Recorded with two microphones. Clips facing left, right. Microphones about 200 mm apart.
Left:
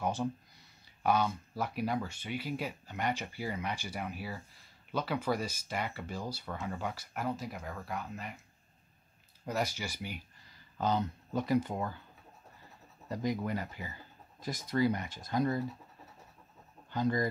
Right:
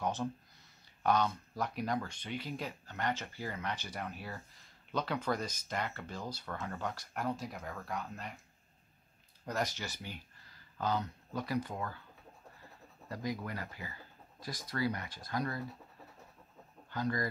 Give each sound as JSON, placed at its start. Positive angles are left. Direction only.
{"t": 0.0, "sound": "speech", "side_deg": 10}
{"t": 9.5, "sound": "speech", "side_deg": 10}
{"t": 10.8, "sound": "speech", "side_deg": 20}
{"t": 13.1, "sound": "speech", "side_deg": 20}
{"t": 16.9, "sound": "speech", "side_deg": 20}